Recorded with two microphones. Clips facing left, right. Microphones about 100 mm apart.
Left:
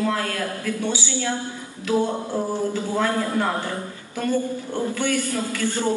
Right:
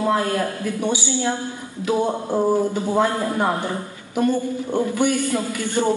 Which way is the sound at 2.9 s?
20° right (ahead or behind).